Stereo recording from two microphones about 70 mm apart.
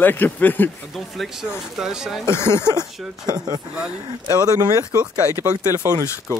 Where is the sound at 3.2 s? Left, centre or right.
Right.